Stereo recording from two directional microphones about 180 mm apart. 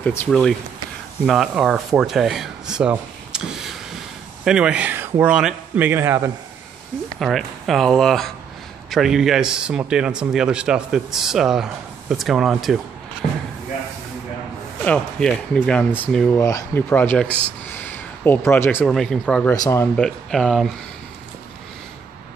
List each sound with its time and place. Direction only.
0.0 s speech: 10° left (ahead or behind)
1.2 s a man's voice: centre (ahead or behind)
7.2 s speech: centre (ahead or behind)
13.2 s speech: 45° left (ahead or behind)
14.9 s speech: 5° left (ahead or behind)
19.5 s speech: 20° left (ahead or behind)
20.0 s speech: centre (ahead or behind)